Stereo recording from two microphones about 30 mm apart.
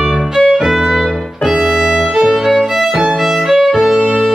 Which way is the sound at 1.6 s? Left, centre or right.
Centre.